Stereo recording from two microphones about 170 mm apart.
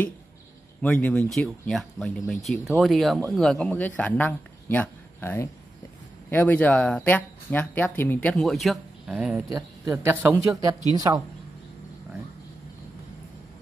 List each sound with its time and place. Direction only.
0.8 s speech: 5° left (ahead or behind)
9.5 s speech: 20° right (ahead or behind)